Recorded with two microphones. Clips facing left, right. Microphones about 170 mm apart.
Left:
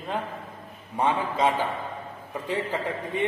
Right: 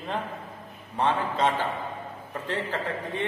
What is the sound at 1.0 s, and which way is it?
A man's voice, 10° left (ahead or behind).